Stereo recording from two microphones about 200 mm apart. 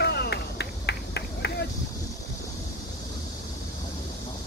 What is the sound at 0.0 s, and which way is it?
Run, 55° left (ahead or behind).